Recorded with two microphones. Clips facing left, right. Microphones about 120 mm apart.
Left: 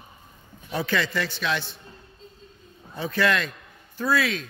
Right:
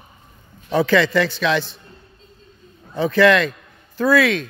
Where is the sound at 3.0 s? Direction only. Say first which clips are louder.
Right 9 dB; 90° right.